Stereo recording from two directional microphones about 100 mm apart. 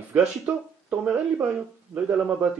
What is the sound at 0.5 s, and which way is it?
Speech, 20° right (ahead or behind).